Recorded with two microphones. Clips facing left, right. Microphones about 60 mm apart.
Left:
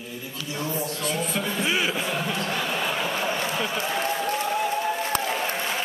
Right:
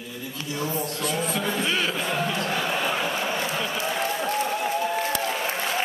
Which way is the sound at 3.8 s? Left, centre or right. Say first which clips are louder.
Even; centre.